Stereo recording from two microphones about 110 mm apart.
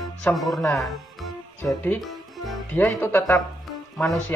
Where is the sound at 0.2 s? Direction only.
Centre (ahead or behind).